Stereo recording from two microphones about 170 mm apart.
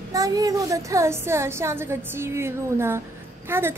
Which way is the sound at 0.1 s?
20° right (ahead or behind).